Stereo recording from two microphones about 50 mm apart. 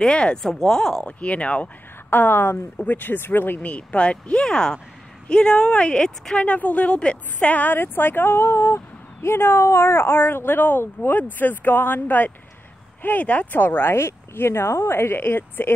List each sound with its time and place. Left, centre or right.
0.0 s a woman's voice: centre
1.0 s a woman's voice: left
2.0 s speech: left
3.6 s a woman's voice: left
6.3 s a woman's voice: left
7.7 s speech: left